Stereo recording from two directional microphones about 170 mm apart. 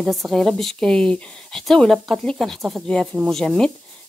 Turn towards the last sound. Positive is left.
turn(degrees=5)  # may be behind; listen again after turning